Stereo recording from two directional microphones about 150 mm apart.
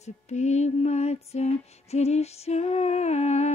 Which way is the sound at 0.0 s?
50° left (ahead or behind).